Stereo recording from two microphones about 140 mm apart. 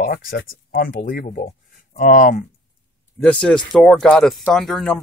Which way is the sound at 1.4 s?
65° left (ahead or behind).